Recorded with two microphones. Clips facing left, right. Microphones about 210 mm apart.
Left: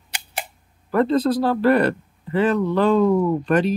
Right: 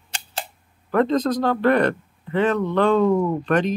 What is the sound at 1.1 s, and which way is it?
Speech, 35° left (ahead or behind).